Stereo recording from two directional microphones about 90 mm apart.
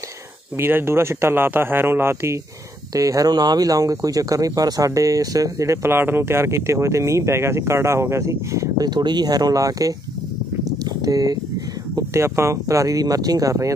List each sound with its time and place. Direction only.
0.6 s speech: 25° right (ahead or behind)
2.9 s speech: 40° right (ahead or behind)
10.8 s a sound: 45° right (ahead or behind)
11.9 s speech: 30° right (ahead or behind)